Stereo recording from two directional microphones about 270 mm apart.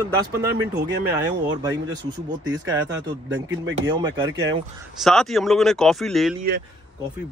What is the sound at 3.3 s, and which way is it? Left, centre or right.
Speech, right.